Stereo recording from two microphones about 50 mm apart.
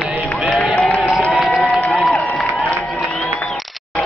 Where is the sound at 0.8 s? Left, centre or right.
Left.